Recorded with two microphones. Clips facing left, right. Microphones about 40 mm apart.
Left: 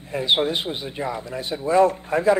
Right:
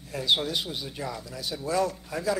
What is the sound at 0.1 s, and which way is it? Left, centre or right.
Speech, left.